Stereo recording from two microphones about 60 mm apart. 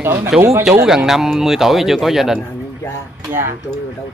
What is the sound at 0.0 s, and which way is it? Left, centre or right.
Speech, right.